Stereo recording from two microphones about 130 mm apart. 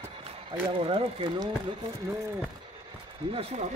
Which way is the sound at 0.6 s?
40° right (ahead or behind).